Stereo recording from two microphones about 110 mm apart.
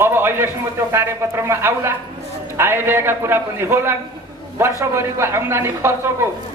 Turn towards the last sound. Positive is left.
turn(degrees=-20)  # may be behind; listen again after turning